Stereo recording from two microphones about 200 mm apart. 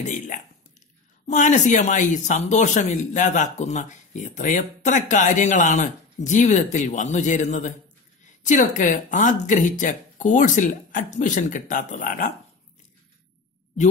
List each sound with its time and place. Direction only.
0.0 s speech: 40° left (ahead or behind)